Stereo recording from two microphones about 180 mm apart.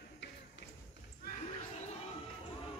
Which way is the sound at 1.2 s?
45° left (ahead or behind).